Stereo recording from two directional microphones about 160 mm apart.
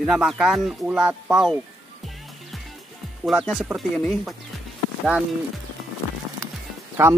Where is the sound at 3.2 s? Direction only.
Centre (ahead or behind).